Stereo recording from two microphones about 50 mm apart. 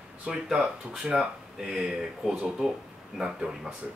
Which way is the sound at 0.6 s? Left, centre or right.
Centre.